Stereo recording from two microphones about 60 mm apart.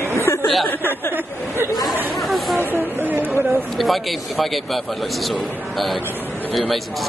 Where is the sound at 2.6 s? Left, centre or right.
Right.